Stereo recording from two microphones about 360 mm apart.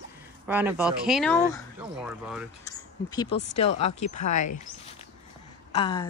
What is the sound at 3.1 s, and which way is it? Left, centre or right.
Speech, centre.